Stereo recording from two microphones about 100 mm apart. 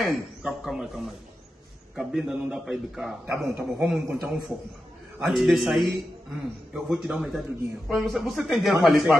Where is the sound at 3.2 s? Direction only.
15° right (ahead or behind).